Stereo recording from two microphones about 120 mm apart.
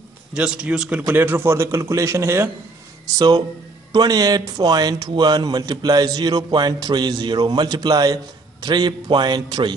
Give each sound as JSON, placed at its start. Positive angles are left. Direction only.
{"t": 0.3, "sound": "a man's voice", "side_deg": -5}
{"t": 3.2, "sound": "speech", "side_deg": -35}